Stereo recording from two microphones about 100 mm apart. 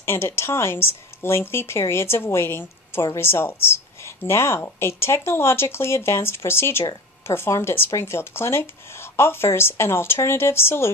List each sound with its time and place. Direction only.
0.0 s speech: 25° left (ahead or behind)